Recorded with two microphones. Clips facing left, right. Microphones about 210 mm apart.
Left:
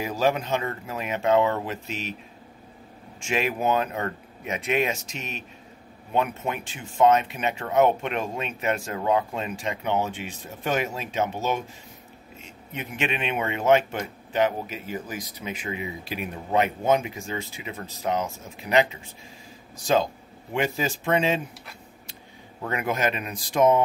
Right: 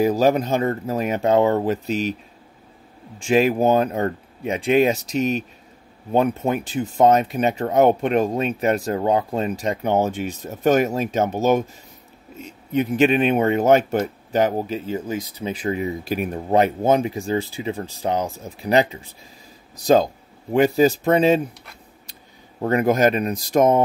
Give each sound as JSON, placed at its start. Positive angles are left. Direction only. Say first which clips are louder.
{"t": 0.0, "sound": "speech", "louder": "right 7 dB", "side_deg": -40}
{"t": 3.2, "sound": "speech", "louder": "right 9 dB", "side_deg": -35}
{"t": 22.6, "sound": "speech", "louder": "right 9 dB", "side_deg": -40}